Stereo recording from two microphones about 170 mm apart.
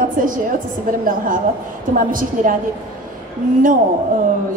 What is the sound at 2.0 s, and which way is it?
Speech, 55° right (ahead or behind).